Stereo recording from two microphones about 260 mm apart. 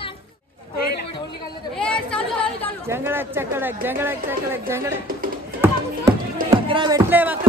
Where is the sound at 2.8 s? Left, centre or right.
Centre.